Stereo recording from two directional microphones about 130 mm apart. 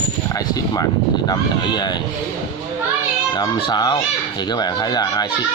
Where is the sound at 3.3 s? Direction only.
35° left (ahead or behind).